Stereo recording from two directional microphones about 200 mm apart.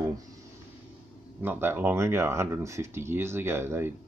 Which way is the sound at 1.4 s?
10° right (ahead or behind).